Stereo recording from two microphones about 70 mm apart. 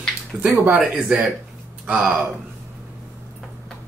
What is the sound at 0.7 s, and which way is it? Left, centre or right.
Speech, centre.